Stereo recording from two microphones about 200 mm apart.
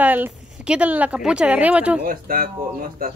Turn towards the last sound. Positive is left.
turn(degrees=-45)  # may be behind; listen again after turning